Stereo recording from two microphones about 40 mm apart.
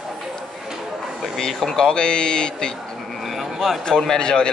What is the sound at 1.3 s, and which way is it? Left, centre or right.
Speech, centre.